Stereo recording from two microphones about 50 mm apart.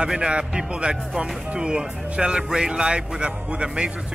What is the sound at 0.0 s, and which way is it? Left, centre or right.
Speech, centre.